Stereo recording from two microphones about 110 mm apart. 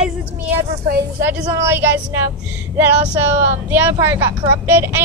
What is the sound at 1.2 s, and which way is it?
Speech, 20° right (ahead or behind).